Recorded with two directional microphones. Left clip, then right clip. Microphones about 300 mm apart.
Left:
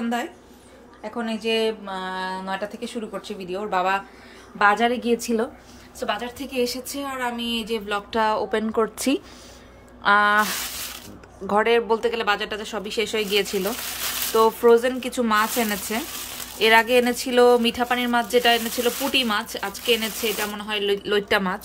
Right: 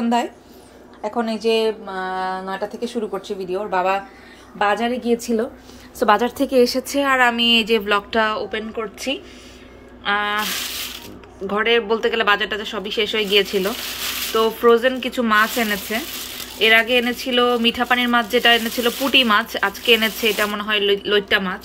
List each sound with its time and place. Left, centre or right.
1.0 s a woman's voice: centre
5.9 s a woman's voice: centre
11.4 s speech: centre